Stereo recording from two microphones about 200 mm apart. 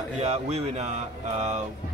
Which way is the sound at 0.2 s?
30° right (ahead or behind).